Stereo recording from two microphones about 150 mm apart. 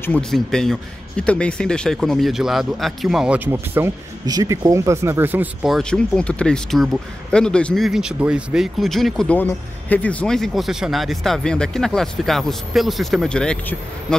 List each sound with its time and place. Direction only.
0.3 s speech: 5° left (ahead or behind); by 3.9 s 15° right (ahead or behind)
4.3 s speech: 25° right (ahead or behind)
5.7 s speech: 5° left (ahead or behind)